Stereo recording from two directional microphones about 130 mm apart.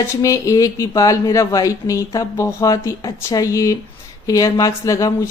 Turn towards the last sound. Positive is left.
turn(degrees=25)  # may be behind; listen again after turning